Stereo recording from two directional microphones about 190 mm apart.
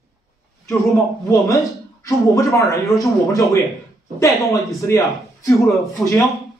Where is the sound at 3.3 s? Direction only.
15° left (ahead or behind).